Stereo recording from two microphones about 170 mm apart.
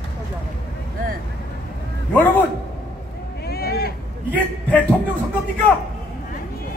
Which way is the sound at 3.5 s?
65° left (ahead or behind).